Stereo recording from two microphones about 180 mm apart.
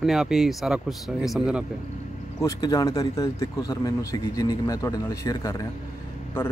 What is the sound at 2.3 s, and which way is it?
A man's voice, 20° left (ahead or behind).